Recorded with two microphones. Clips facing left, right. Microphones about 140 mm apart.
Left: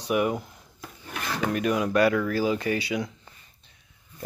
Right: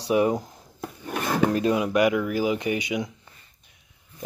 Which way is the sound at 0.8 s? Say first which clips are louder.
Right 7 dB; 45° right (ahead or behind).